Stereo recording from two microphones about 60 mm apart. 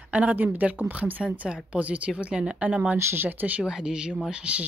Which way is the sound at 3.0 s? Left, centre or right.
Right.